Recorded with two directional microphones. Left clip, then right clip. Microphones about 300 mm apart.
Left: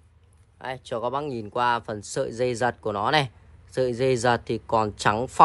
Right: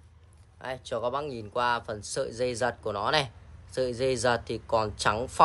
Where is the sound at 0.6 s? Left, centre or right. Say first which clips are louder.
Left 2 dB; left.